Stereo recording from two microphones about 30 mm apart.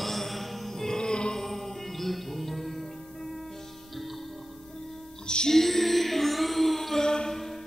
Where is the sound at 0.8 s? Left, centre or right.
Left.